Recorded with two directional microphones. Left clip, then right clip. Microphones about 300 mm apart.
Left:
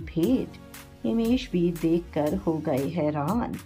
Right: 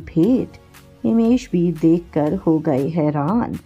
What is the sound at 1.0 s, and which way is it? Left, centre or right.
Speech, right.